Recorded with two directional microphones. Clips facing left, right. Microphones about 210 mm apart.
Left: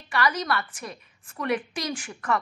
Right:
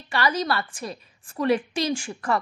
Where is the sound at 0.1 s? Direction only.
30° right (ahead or behind).